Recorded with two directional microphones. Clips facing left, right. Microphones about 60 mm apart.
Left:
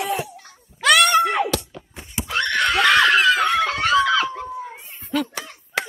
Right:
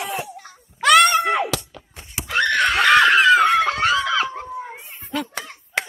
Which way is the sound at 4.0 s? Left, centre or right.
Right.